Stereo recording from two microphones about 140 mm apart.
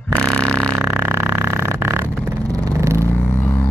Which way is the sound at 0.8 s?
15° right (ahead or behind).